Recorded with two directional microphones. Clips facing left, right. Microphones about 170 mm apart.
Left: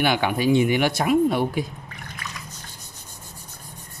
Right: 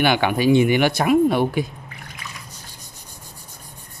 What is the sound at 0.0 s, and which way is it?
Speech, 70° right (ahead or behind).